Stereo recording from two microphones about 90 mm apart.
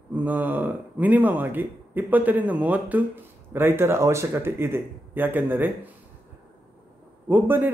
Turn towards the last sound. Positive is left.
turn(degrees=-20)  # may be behind; listen again after turning